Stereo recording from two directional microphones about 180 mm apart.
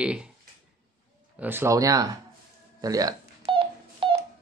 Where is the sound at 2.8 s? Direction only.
20° right (ahead or behind).